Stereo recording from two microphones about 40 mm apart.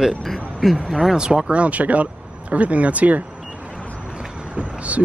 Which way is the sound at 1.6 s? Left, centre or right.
Right.